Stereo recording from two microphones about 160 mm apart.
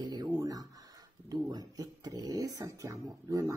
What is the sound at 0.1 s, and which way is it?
Speech, 25° right (ahead or behind).